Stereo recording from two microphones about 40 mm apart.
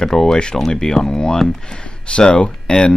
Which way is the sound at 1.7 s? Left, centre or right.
Left.